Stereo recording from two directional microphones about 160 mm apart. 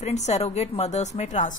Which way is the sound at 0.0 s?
45° left (ahead or behind).